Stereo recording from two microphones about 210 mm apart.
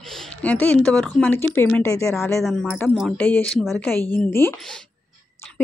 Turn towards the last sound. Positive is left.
turn(degrees=10)  # may be behind; listen again after turning